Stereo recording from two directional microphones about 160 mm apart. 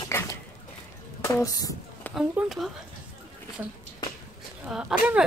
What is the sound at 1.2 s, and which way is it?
Speech, 20° left (ahead or behind).